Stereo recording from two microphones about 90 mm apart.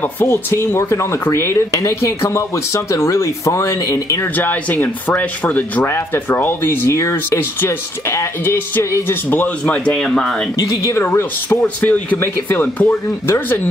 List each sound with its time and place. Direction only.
0.2 s speech: 30° left (ahead or behind)
4.4 s speech: 20° left (ahead or behind)
10.6 s speech: 35° left (ahead or behind)